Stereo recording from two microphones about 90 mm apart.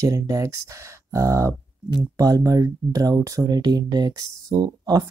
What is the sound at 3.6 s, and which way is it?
Speech, 50° right (ahead or behind).